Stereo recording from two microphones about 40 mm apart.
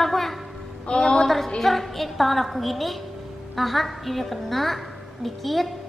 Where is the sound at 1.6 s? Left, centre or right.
Centre.